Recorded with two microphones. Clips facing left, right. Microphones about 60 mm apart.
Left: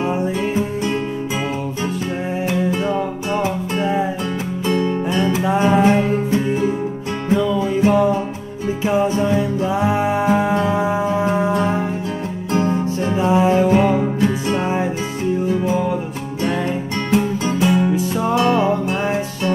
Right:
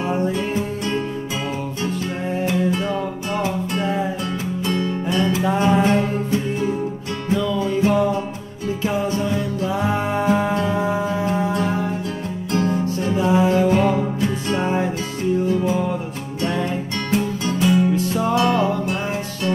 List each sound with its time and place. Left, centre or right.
0.0 s music: centre
2.4 s music: centre
15.5 s music: centre
17.6 s music: centre